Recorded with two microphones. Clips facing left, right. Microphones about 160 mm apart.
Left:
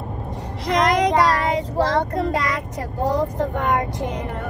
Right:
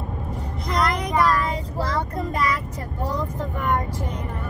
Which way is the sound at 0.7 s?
85° left.